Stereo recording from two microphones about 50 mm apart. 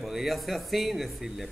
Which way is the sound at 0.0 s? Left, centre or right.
Centre.